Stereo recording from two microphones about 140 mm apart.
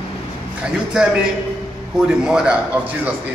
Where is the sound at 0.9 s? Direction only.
5° right (ahead or behind).